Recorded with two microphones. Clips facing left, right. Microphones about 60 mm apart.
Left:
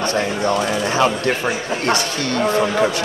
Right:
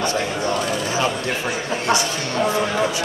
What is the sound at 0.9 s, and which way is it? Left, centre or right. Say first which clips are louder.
Speech: left 7 dB; left.